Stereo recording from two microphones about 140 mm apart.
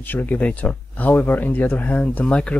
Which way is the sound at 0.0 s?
15° left (ahead or behind).